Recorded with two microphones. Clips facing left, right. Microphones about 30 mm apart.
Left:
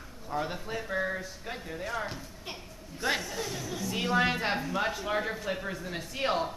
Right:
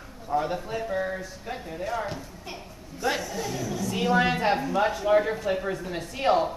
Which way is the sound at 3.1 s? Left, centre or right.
Centre.